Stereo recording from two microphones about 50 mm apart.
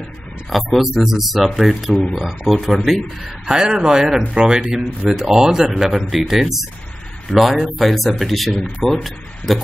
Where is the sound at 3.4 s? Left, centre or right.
Centre.